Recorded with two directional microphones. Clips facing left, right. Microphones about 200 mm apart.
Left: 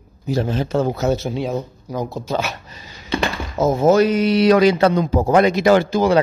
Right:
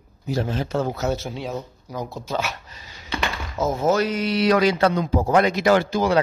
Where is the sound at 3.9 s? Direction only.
15° left (ahead or behind); by 5.3 s 35° left (ahead or behind).